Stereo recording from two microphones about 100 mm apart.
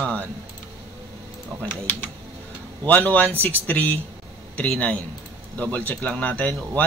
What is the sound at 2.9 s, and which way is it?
Speech, 15° left (ahead or behind).